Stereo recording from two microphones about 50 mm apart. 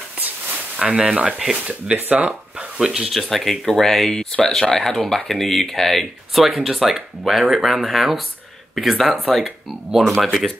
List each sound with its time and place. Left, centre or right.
0.7 s speech: centre
2.8 s speech: centre
3.1 s speech: centre